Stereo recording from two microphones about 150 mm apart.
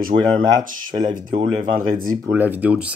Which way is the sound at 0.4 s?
30° right (ahead or behind).